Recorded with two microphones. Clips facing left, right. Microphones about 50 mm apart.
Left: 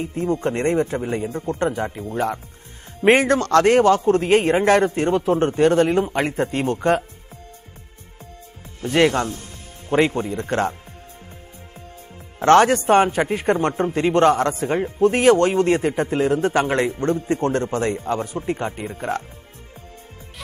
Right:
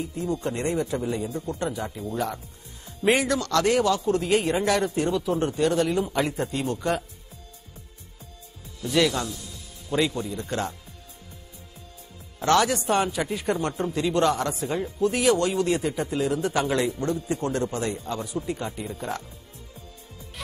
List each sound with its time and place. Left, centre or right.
0.0 s a man's voice: left
8.8 s speech: left
12.4 s a man's voice: left